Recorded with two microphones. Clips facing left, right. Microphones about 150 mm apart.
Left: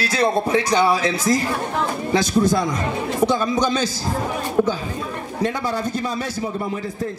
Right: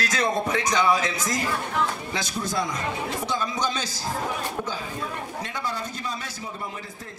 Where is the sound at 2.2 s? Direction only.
70° left (ahead or behind).